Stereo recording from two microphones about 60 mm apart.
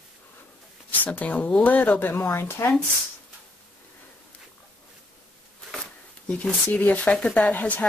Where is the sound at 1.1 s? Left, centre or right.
Left.